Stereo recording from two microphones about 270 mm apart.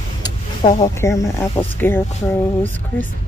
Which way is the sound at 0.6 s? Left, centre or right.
Centre.